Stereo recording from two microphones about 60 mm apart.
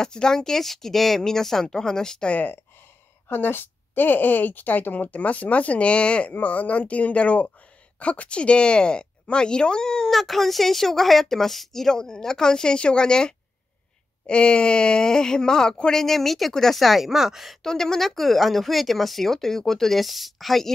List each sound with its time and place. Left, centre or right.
0.0 s a woman's voice: centre
2.3 s a woman's voice: left; by 17.6 s centre
17.6 s speech: centre